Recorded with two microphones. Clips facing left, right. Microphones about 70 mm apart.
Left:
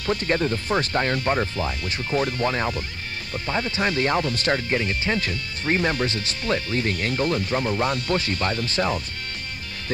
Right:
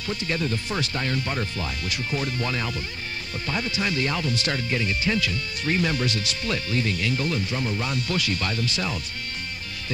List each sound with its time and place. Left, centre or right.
0.0 s speech: left